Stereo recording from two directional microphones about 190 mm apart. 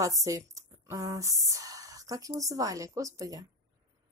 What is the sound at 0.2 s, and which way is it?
Speech, 15° right (ahead or behind).